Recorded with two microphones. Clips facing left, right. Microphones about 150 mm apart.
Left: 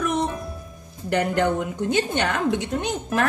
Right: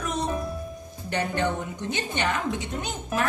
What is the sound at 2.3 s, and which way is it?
Speech, 65° left (ahead or behind).